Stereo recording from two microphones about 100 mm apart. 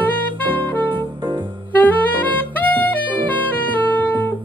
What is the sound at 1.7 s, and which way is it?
Saxophone, 15° left (ahead or behind).